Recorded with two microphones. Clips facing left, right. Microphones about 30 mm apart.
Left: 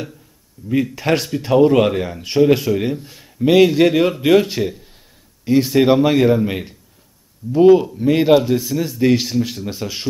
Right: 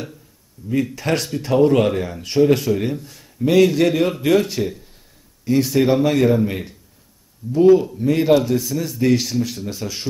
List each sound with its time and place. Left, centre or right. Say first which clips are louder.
0.6 s speech: left 2 dB; centre
3.0 s speech: left 2 dB; left
7.5 s speech: left 2 dB; centre